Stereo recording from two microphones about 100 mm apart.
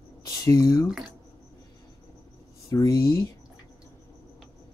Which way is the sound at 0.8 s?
5° right (ahead or behind).